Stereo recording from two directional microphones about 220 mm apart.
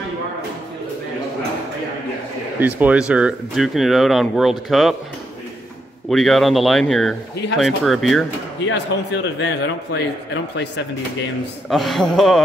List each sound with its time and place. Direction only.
2.6 s speech: 5° right (ahead or behind)
6.0 s speech: centre (ahead or behind)
8.6 s a man's voice: 50° left (ahead or behind)
11.7 s speech: centre (ahead or behind)